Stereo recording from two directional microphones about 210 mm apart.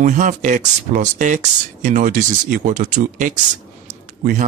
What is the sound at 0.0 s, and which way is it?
Speech, 35° right (ahead or behind).